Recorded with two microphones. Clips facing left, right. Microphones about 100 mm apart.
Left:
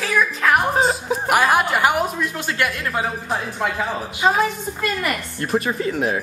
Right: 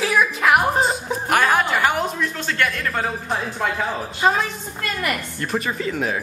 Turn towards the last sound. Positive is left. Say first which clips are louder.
# left 2 dB
turn(degrees=5)  # may be behind; listen again after turning